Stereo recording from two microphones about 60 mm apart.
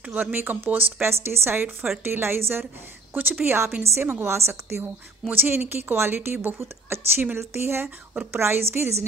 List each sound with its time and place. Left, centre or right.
0.0 s a woman's voice: right
5.3 s a woman's voice: right